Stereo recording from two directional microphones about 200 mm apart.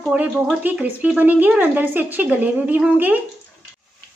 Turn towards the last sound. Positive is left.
turn(degrees=-10)  # may be behind; listen again after turning